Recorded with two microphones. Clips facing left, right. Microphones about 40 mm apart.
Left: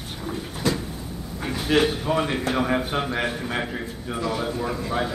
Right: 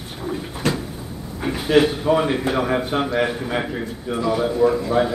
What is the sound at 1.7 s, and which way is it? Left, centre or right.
A man's voice, centre.